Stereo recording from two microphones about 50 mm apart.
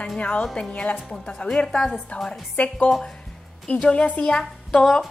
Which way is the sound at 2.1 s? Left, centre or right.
Left.